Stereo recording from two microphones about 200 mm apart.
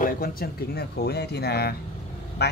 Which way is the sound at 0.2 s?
50° left (ahead or behind).